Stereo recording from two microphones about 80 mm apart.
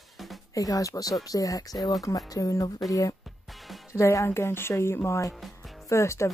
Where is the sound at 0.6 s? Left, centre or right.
Left.